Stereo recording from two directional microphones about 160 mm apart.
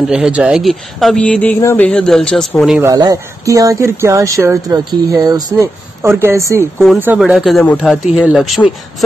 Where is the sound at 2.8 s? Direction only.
20° right (ahead or behind).